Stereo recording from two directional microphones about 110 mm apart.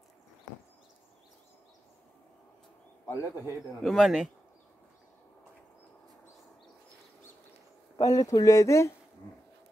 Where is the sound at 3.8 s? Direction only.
Centre (ahead or behind).